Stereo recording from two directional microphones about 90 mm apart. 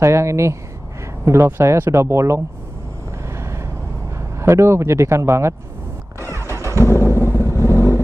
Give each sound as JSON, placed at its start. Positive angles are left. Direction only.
{"t": 0.0, "sound": "speech", "side_deg": -30}
{"t": 3.3, "sound": "vehicle", "side_deg": -30}
{"t": 4.4, "sound": "speech", "side_deg": -30}
{"t": 6.5, "sound": "vehicle", "side_deg": -30}
{"t": 6.8, "sound": "vehicle", "side_deg": 30}